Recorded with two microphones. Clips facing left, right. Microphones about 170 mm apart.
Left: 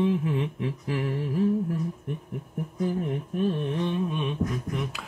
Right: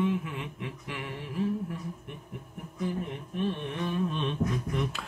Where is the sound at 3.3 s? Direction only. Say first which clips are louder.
Left 4 dB; 40° left (ahead or behind).